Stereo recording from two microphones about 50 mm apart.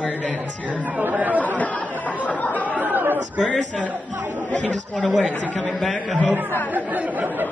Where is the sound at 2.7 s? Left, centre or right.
Right.